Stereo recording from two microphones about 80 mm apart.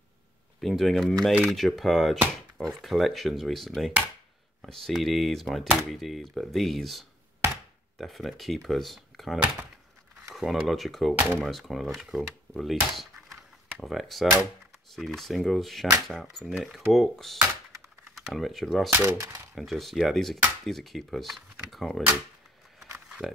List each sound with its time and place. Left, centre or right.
0.6 s speech: centre
11.1 s speech: right
11.4 s speech: centre
18.9 s speech: right
19.5 s speech: centre
21.6 s typewriter: centre
23.0 s a sound: centre